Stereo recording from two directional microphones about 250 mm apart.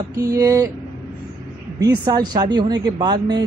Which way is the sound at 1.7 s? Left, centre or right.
Centre.